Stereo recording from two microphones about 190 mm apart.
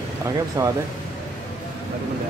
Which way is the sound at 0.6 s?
20° right (ahead or behind).